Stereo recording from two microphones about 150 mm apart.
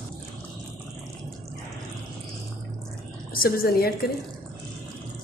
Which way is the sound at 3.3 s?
85° left.